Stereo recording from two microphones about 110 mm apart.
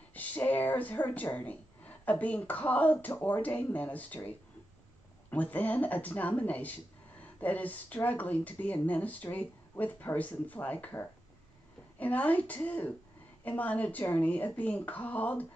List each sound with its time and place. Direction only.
0.1 s speech: 15° left (ahead or behind)
5.3 s speech: 15° left (ahead or behind)